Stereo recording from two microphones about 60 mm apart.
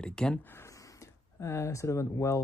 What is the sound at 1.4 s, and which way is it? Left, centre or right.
Speech, left.